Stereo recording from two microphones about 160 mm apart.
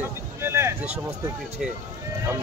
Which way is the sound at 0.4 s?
15° right (ahead or behind).